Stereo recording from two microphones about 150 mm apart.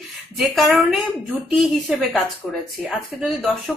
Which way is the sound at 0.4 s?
Centre (ahead or behind).